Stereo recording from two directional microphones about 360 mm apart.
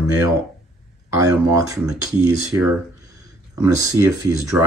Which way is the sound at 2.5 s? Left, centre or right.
Centre.